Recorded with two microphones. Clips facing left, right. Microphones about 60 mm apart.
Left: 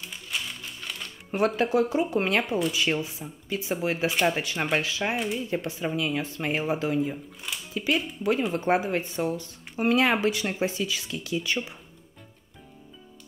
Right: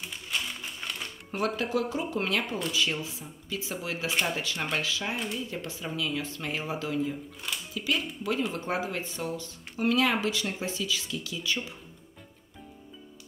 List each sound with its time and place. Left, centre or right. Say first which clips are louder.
0.3 s typewriter: even; centre
1.3 s speech: left 5 dB; left
5.1 s speech: left 5 dB; centre
5.5 s speech: left 7 dB; left